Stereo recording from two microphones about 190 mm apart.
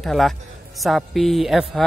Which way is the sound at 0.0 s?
Centre (ahead or behind).